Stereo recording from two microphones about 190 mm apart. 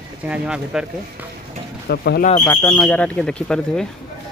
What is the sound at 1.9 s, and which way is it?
Speech, 55° left (ahead or behind).